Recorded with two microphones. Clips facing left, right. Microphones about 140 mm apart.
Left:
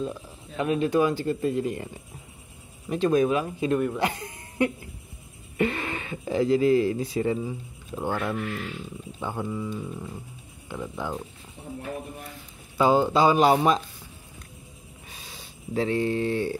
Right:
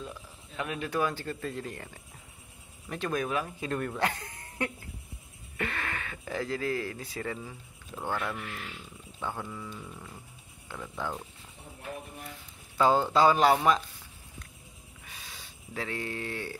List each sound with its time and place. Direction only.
0.0 s speech: 25° left (ahead or behind)
3.8 s a sound: 10° left (ahead or behind)
5.6 s speech: 20° left (ahead or behind)
12.7 s speech: 15° left (ahead or behind)
15.7 s speech: 25° left (ahead or behind)